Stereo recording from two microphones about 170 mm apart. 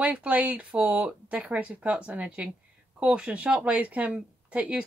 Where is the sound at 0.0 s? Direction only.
5° right (ahead or behind).